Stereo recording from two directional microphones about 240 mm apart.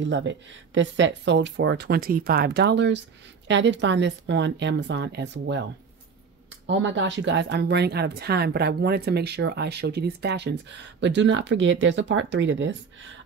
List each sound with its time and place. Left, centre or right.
0.0 s speech: right